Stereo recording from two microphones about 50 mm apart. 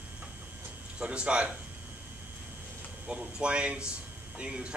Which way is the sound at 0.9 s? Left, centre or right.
Right.